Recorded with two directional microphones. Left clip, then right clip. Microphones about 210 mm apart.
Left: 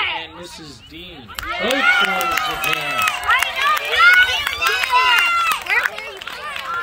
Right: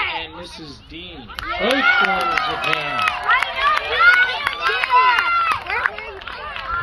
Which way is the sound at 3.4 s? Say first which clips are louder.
Left 1 dB; 25° left (ahead or behind).